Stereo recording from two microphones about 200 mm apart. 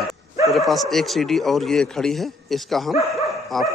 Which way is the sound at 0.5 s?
Centre (ahead or behind).